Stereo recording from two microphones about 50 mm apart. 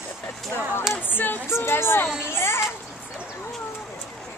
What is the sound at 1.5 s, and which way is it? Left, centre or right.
Speech, left.